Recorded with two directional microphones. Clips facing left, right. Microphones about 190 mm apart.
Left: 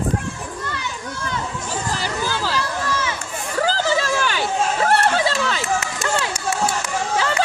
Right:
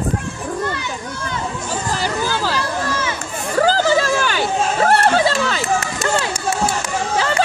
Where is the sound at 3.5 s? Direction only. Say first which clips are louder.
Right 5 dB; 45° right (ahead or behind).